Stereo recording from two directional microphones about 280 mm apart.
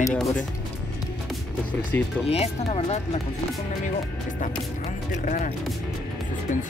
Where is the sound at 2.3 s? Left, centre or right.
Left.